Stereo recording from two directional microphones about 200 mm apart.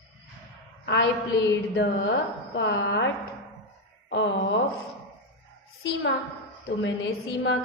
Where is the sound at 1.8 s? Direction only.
60° left (ahead or behind).